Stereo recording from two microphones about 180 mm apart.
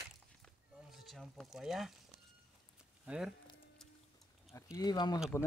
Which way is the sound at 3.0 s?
5° right (ahead or behind).